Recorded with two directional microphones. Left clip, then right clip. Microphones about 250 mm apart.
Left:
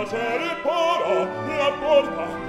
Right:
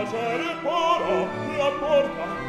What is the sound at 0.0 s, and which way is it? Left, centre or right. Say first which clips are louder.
Music: left 1 dB; centre.